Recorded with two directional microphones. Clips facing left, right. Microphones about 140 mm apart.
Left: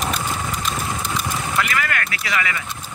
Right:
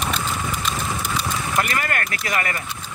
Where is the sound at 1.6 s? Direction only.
40° right (ahead or behind).